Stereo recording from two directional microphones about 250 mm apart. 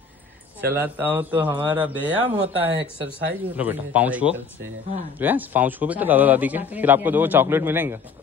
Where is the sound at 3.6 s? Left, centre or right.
Centre.